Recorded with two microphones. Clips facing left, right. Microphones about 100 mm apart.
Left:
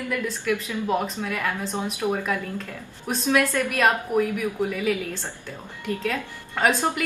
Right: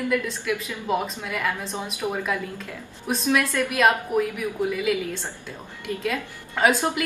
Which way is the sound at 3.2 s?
15° left (ahead or behind).